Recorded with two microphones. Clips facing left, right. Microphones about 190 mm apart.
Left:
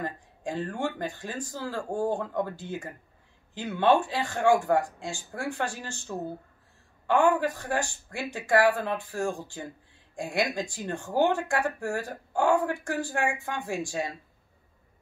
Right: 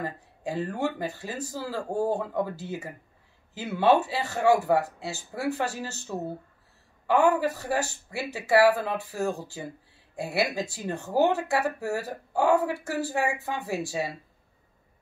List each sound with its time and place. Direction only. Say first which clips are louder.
0.0 s speech: right 1 dB; 5° right (ahead or behind)